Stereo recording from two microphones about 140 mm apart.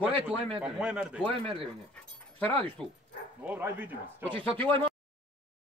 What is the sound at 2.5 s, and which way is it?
Speech, 40° right (ahead or behind).